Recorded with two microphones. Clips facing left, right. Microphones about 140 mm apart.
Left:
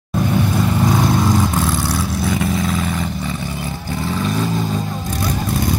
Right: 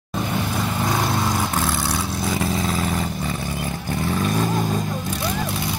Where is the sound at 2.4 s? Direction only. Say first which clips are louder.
Left 3 dB; 35° right (ahead or behind).